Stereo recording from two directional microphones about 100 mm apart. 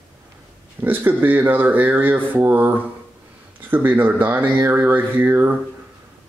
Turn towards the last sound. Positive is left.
turn(degrees=-20)  # may be behind; listen again after turning